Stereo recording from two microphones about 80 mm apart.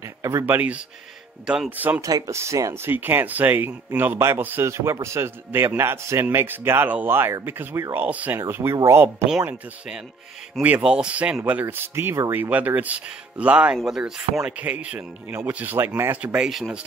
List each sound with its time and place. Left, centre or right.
0.0 s a sound: right
0.6 s speech: centre
2.0 s a man's voice: right
8.4 s a man's voice: right
10.8 s speech: centre
13.7 s speech: centre
16.4 s speech: centre